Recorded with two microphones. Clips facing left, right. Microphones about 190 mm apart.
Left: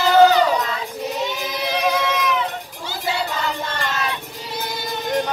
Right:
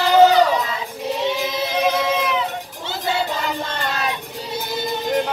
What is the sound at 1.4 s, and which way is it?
Music, 25° right (ahead or behind).